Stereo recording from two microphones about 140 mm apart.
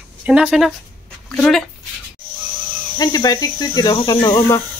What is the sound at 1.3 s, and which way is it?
Speech, 10° left (ahead or behind).